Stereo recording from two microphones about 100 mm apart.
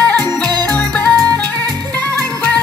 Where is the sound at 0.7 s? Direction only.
15° left (ahead or behind).